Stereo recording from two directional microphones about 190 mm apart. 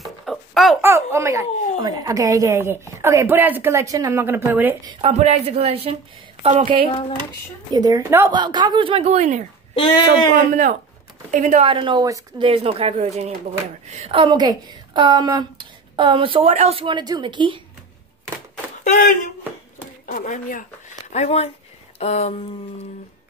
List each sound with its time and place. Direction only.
0.0 s a sound: centre (ahead or behind)
0.7 s a child's voice: 15° right (ahead or behind)
5.0 s a woman's voice: 35° right (ahead or behind)
6.9 s speech: 25° left (ahead or behind)
7.7 s a woman's voice: 20° right (ahead or behind); by 9.4 s 35° right (ahead or behind)
9.8 s speech: 25° left (ahead or behind)
10.3 s a woman's voice: 40° right (ahead or behind); by 17.6 s 25° right (ahead or behind)
18.9 s speech: 45° left (ahead or behind)
20.2 s speech: 45° left (ahead or behind)
21.9 s a sound: 35° left (ahead or behind)